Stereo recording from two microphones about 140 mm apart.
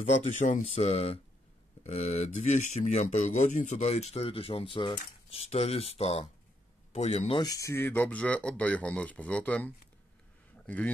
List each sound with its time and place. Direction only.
0.0 s speech: 55° left (ahead or behind); by 4.9 s 35° left (ahead or behind)
4.9 s speech: 45° left (ahead or behind)
7.4 s speech: 25° left (ahead or behind)